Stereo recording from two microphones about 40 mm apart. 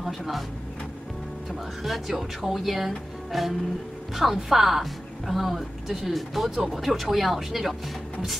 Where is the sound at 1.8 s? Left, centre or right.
Centre.